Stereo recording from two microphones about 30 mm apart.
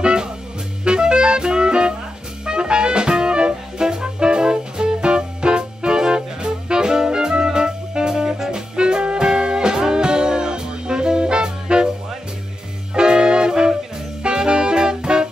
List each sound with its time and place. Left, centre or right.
0.0 s music: right
8.1 s music: centre
8.5 s music: right
12.9 s music: right